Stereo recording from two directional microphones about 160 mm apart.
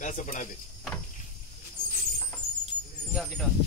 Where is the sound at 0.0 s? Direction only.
50° left (ahead or behind).